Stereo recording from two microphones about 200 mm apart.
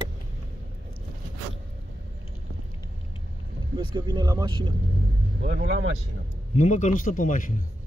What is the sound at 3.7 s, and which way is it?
Speech, 20° right (ahead or behind).